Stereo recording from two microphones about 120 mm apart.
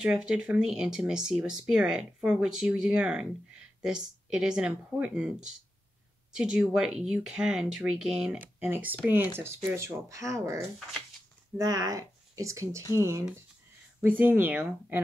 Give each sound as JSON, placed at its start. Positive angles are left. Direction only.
{"t": 0.0, "sound": "speech", "side_deg": -5}
{"t": 14.0, "sound": "speech", "side_deg": -15}